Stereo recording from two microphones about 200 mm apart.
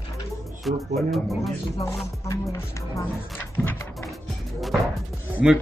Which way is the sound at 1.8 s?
15° left (ahead or behind).